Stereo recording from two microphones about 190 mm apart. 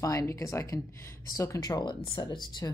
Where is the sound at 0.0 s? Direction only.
15° left (ahead or behind).